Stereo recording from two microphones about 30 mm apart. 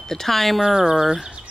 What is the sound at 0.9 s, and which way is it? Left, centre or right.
Speech, centre.